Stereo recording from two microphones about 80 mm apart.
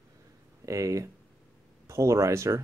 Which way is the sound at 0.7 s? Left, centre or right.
Right.